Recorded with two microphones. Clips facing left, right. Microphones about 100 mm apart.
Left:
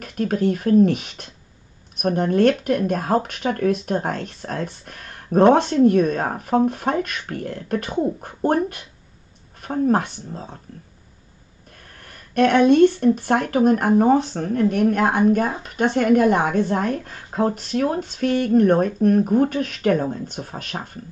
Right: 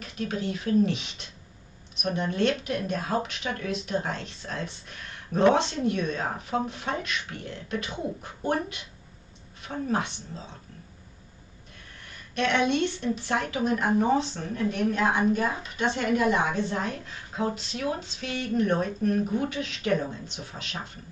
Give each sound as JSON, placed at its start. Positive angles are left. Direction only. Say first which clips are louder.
{"t": 0.0, "sound": "speech", "louder": "left 10 dB", "side_deg": 50}
{"t": 11.9, "sound": "speech", "louder": "left 10 dB", "side_deg": 50}